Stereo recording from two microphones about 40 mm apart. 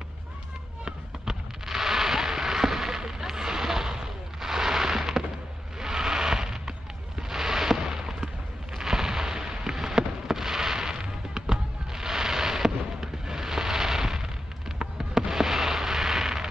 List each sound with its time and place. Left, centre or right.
0.8 s fireworks: centre
3.0 s artillery fire: centre
5.8 s a sound: centre
8.7 s fireworks: centre